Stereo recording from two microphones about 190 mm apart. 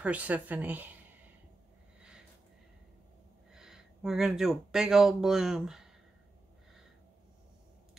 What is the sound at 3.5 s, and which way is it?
Speech, centre (ahead or behind).